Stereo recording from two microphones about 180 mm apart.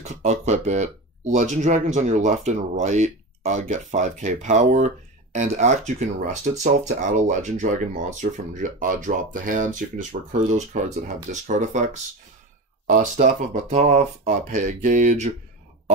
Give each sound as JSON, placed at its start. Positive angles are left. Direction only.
{"t": 0.0, "sound": "speech", "side_deg": -40}
{"t": 12.8, "sound": "speech", "side_deg": -45}
{"t": 13.7, "sound": "speech", "side_deg": -40}